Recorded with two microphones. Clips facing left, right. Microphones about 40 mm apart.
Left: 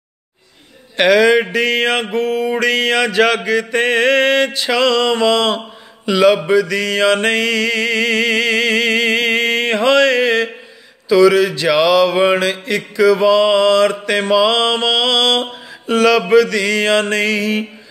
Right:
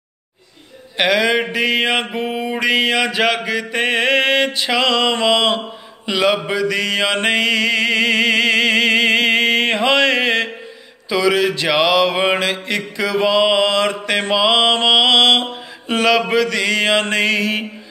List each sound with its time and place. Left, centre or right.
0.9 s mantra: centre
6.6 s mantra: right